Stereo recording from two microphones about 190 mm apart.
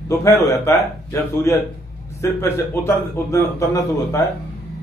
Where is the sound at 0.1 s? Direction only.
15° left (ahead or behind).